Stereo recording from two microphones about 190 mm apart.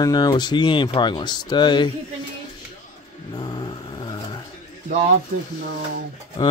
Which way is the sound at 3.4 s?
20° left (ahead or behind).